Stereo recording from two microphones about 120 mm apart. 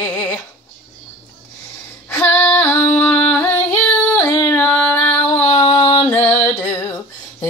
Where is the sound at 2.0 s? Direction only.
15° left (ahead or behind).